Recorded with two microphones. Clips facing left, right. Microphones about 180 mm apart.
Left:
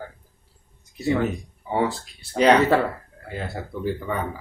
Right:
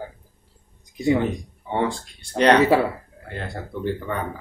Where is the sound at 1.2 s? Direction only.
5° left (ahead or behind).